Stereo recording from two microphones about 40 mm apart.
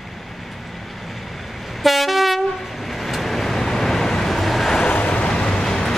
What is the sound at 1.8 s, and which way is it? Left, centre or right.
Train, centre.